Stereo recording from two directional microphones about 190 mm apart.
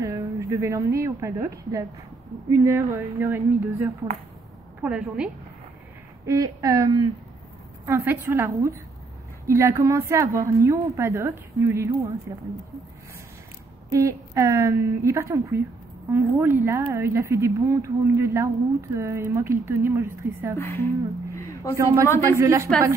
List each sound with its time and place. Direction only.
0.0 s a woman's voice: 15° right (ahead or behind)
4.8 s a woman's voice: 5° right (ahead or behind)
6.2 s a woman's voice: 15° right (ahead or behind)
13.9 s a woman's voice: 15° right (ahead or behind)
20.5 s a woman's voice: 10° left (ahead or behind)
21.4 s a sound: 15° left (ahead or behind)
22.2 s a woman's voice: 15° right (ahead or behind)